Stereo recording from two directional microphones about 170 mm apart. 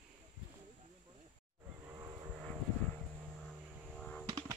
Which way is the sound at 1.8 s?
15° right (ahead or behind).